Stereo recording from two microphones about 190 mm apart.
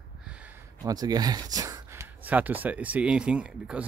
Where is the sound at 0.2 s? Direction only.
5° right (ahead or behind).